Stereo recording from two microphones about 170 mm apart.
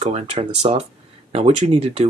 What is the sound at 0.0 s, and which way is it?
Speech, 35° right (ahead or behind).